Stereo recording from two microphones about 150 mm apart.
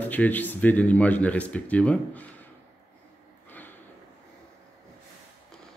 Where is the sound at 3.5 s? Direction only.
10° left (ahead or behind).